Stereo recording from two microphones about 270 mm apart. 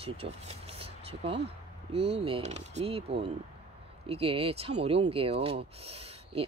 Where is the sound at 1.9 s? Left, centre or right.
Right.